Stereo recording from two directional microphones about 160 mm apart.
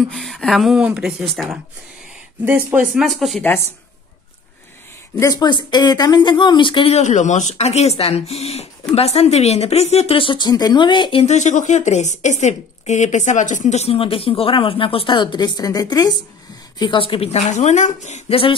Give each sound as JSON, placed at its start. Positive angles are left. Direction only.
{"t": 0.1, "sound": "speech", "side_deg": 0}
{"t": 2.4, "sound": "speech", "side_deg": -10}
{"t": 3.0, "sound": "speech", "side_deg": 0}
{"t": 5.2, "sound": "a woman's voice", "side_deg": 25}
{"t": 11.3, "sound": "a woman's voice", "side_deg": 50}